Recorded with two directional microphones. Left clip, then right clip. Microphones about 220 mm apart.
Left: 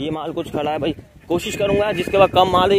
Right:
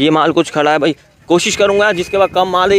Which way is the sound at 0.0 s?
35° right (ahead or behind).